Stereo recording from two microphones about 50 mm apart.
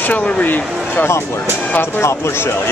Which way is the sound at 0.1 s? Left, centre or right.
Left.